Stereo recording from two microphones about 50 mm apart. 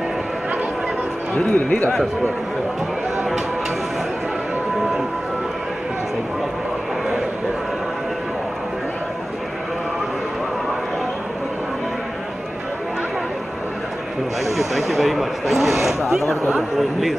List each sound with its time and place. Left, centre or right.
1.5 s speech: left
14.4 s speech: centre